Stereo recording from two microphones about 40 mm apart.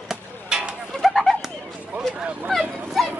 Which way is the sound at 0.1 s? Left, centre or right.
Right.